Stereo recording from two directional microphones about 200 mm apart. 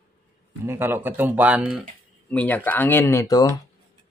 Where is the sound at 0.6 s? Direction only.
10° right (ahead or behind).